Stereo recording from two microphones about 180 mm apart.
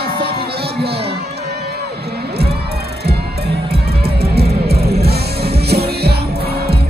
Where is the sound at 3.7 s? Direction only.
60° right (ahead or behind).